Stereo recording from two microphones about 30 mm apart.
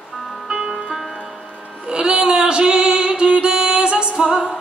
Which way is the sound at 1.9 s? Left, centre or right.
Right.